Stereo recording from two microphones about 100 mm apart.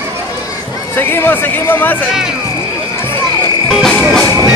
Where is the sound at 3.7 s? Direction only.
5° left (ahead or behind).